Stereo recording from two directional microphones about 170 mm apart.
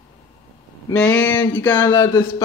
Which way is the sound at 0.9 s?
10° left (ahead or behind).